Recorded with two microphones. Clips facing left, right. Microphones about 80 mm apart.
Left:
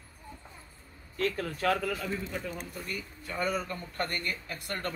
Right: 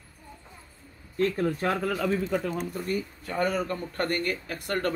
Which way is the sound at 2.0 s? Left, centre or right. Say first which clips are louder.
Right 9 dB; right.